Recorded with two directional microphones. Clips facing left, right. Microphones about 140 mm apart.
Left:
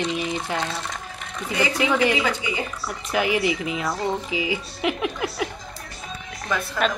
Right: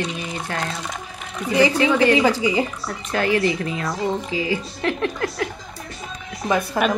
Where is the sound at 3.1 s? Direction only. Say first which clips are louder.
Right 2 dB; 10° left (ahead or behind).